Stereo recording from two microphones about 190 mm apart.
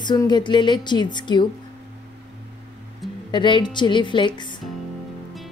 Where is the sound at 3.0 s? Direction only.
Centre (ahead or behind).